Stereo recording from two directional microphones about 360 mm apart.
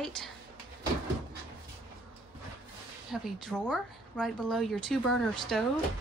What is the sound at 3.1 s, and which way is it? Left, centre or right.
A woman's voice, centre.